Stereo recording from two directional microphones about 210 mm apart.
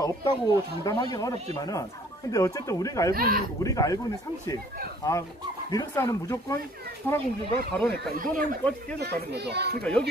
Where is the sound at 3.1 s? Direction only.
45° right (ahead or behind).